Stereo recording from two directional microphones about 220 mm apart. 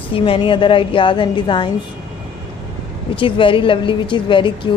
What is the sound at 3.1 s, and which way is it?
A woman's voice, 25° left (ahead or behind).